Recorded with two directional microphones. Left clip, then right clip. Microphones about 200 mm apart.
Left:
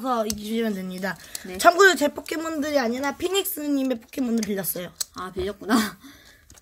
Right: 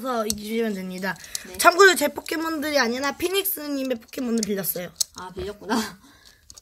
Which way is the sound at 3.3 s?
10° left (ahead or behind).